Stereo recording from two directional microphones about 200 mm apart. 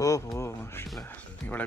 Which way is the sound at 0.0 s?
15° left (ahead or behind).